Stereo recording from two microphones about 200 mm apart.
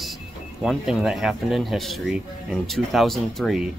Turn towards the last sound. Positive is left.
turn(degrees=0)  # may be behind; listen again after turning